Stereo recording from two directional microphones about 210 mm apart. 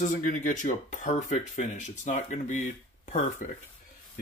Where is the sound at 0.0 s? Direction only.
40° left (ahead or behind).